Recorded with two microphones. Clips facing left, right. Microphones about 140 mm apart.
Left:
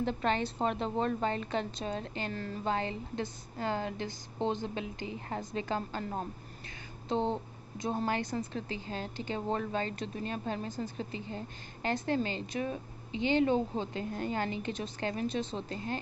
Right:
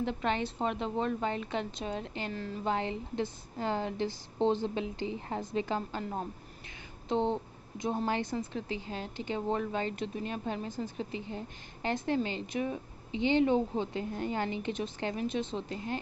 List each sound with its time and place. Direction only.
0.0 s a woman's voice: 15° right (ahead or behind)
8.0 s a woman's voice: 25° right (ahead or behind)